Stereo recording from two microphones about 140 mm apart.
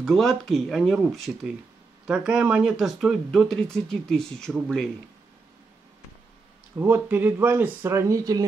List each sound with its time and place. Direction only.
0.0 s speech: centre (ahead or behind)
6.8 s speech: 15° right (ahead or behind)